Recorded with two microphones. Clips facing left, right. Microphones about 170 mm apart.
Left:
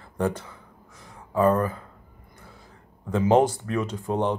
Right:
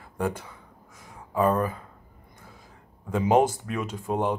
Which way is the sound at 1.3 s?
20° right (ahead or behind).